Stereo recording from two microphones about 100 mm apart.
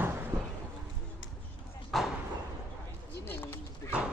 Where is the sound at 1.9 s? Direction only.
Centre (ahead or behind).